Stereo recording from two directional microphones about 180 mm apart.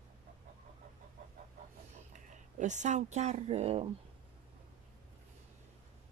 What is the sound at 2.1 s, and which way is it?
Speech, 40° right (ahead or behind).